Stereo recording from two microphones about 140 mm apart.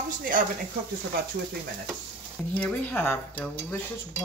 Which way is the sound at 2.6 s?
15° left (ahead or behind).